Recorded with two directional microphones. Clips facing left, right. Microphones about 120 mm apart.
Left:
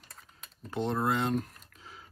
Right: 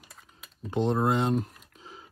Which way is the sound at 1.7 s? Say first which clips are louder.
Right 4 dB; 30° right (ahead or behind).